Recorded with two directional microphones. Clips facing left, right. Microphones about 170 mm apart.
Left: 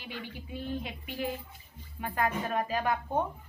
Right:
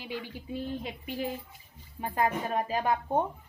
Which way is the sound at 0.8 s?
30° right (ahead or behind).